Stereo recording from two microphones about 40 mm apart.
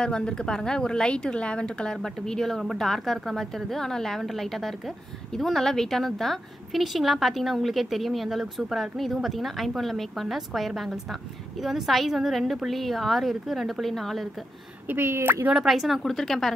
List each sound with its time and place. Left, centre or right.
0.0 s a woman's voice: left
2.0 s a woman's voice: centre
15.0 s a woman's voice: right
15.6 s a woman's voice: centre
16.0 s a woman's voice: centre